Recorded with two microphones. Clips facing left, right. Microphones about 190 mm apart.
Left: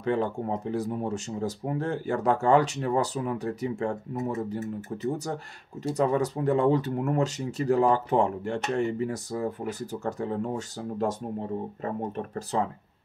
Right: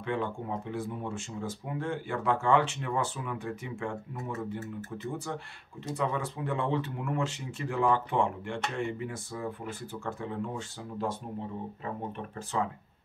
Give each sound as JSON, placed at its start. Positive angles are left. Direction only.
{"t": 0.0, "sound": "speech", "side_deg": 40}